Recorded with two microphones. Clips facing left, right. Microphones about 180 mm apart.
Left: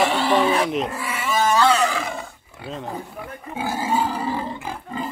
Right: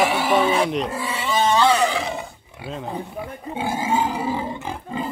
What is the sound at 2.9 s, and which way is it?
Speech, 20° right (ahead or behind).